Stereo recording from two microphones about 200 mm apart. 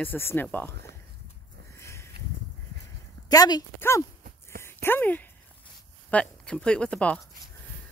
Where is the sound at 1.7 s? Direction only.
15° left (ahead or behind).